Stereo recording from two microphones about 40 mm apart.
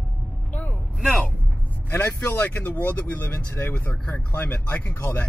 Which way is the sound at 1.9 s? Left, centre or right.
Left.